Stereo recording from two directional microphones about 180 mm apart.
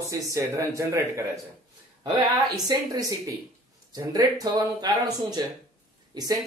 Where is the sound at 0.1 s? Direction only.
20° right (ahead or behind).